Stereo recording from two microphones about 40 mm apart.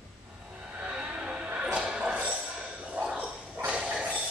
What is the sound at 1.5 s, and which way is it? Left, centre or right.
Music, right.